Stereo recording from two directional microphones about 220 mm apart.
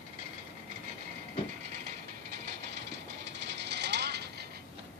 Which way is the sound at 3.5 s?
50° right (ahead or behind).